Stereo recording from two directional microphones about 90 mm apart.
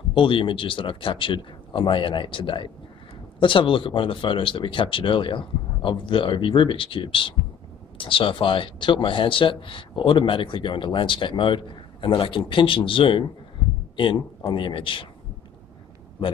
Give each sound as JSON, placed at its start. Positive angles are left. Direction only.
{"t": 0.1, "sound": "speech", "side_deg": 75}